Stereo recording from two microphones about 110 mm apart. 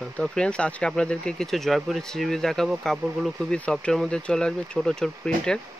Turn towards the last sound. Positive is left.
turn(degrees=5)  # may be behind; listen again after turning